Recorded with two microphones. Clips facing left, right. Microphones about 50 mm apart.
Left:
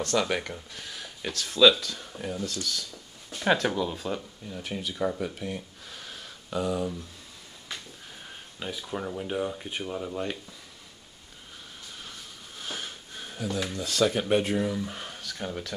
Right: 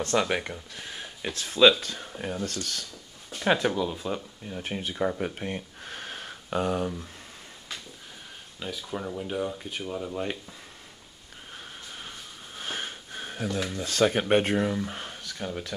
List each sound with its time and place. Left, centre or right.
0.0 s speech: right
1.8 s speech: right
3.3 s speech: centre
4.5 s speech: right
5.2 s a sound: right
8.5 s speech: centre
12.0 s sniff: right
13.5 s speech: right
13.8 s speech: right
14.8 s a sound: centre
15.3 s speech: centre